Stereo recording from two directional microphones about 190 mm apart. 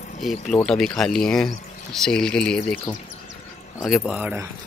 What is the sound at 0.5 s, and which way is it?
Speech, 5° left (ahead or behind).